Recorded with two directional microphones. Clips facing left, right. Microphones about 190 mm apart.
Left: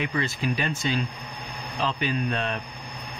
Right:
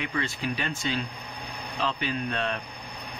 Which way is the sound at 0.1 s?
15° left (ahead or behind).